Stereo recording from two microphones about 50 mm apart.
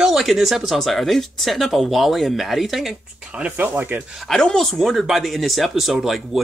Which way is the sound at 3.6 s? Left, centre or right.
Right.